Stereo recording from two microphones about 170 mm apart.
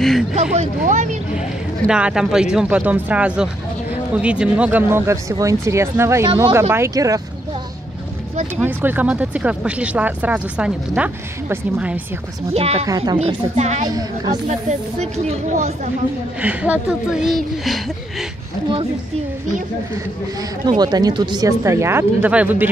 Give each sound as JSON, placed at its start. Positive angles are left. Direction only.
{"t": 0.4, "sound": "speech", "side_deg": -45}
{"t": 1.9, "sound": "speech", "side_deg": -5}
{"t": 8.5, "sound": "speech", "side_deg": -10}
{"t": 12.5, "sound": "a woman's voice", "side_deg": -35}
{"t": 12.8, "sound": "speech", "side_deg": -20}
{"t": 13.6, "sound": "a woman's voice", "side_deg": -40}
{"t": 13.8, "sound": "speech", "side_deg": -25}
{"t": 14.7, "sound": "speech", "side_deg": -40}
{"t": 16.3, "sound": "speech", "side_deg": -10}
{"t": 20.6, "sound": "speech", "side_deg": -25}